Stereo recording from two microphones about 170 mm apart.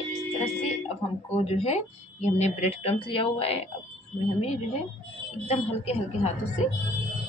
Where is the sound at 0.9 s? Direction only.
35° left (ahead or behind).